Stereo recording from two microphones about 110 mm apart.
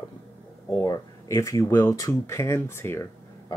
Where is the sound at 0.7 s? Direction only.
30° left (ahead or behind).